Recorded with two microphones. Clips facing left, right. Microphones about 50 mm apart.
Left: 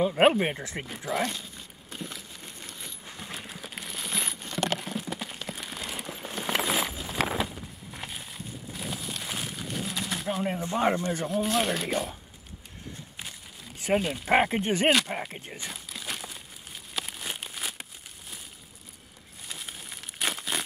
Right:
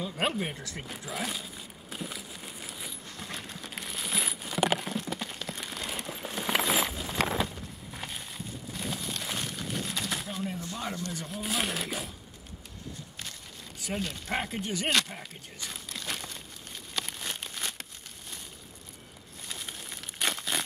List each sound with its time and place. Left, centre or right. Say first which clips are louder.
0.0 s speech: left 9 dB; left
1.1 s crumpling: left 6 dB; centre
3.1 s a sound: left 2 dB; centre
11.0 s speech: left 7 dB; left
11.2 s speech: left 6 dB; centre
13.9 s speech: left 8 dB; centre
14.3 s speech: left 10 dB; left
15.7 s crumpling: right 3 dB; centre
16.9 s a sound: left 1 dB; centre
19.4 s crumpling: even; centre